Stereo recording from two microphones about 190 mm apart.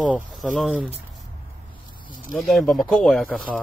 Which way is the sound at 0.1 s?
Centre (ahead or behind).